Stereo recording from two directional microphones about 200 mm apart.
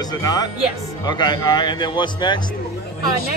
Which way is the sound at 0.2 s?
20° left (ahead or behind).